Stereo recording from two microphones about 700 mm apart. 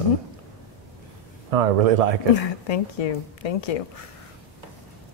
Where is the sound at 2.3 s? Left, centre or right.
Left.